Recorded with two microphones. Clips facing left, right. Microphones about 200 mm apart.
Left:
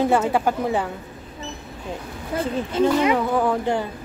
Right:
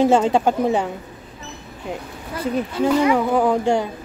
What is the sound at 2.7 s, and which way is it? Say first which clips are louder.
Speech: left 3 dB; 20° left (ahead or behind).